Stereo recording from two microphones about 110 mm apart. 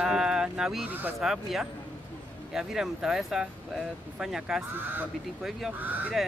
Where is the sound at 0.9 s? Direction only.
15° right (ahead or behind).